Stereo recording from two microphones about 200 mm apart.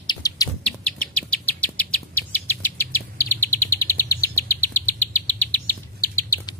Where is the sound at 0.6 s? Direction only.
5° left (ahead or behind).